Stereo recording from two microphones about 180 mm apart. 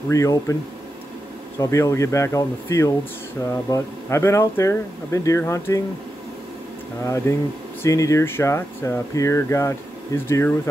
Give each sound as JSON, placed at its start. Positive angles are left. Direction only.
{"t": 0.1, "sound": "speech", "side_deg": 15}
{"t": 1.6, "sound": "speech", "side_deg": 15}
{"t": 7.1, "sound": "speech", "side_deg": 15}